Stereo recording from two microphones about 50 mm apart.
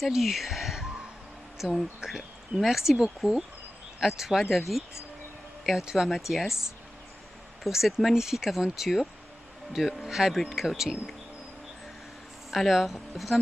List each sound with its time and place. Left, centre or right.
0.0 s speech: centre
7.7 s speech: centre
12.4 s speech: centre